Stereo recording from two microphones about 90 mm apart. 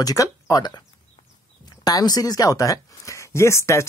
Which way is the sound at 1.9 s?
45° left (ahead or behind).